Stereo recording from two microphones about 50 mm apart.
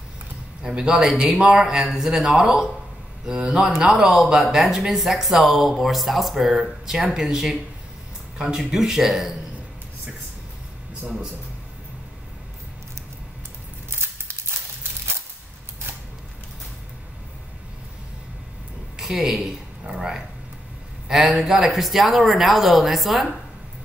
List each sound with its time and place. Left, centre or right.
0.6 s a man's voice: centre
8.5 s a man's voice: centre
13.8 s a sound: right
18.9 s a woman's voice: centre